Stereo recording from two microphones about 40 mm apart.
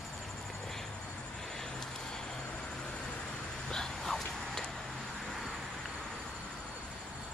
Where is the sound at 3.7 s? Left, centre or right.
Centre.